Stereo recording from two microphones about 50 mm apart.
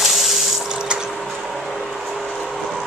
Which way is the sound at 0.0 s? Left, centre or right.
Centre.